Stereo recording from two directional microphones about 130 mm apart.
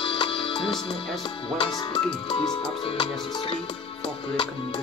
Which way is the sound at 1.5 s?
40° left (ahead or behind).